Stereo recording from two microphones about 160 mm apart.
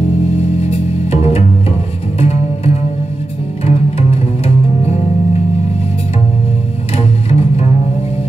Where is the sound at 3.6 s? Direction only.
40° left (ahead or behind).